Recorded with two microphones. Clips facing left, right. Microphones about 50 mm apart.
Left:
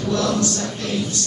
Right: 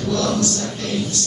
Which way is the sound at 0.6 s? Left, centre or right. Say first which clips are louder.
Even; centre.